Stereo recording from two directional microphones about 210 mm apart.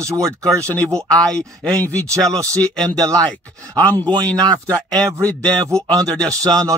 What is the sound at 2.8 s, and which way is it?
Speech, 15° right (ahead or behind).